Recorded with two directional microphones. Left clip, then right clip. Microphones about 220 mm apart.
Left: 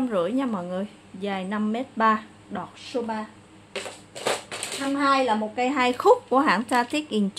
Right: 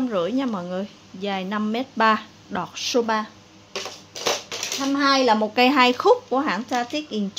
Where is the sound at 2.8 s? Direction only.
40° right (ahead or behind).